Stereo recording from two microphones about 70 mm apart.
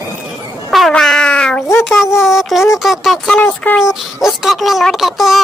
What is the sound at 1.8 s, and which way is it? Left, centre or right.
A child's voice, centre.